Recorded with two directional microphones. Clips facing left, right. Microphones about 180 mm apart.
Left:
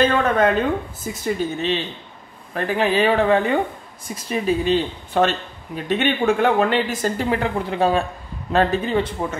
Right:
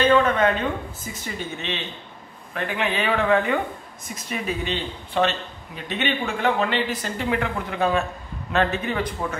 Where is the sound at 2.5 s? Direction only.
35° left (ahead or behind).